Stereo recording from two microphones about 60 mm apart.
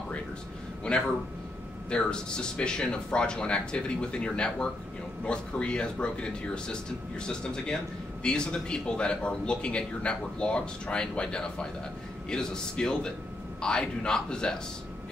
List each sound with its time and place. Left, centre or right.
0.9 s a man's voice: centre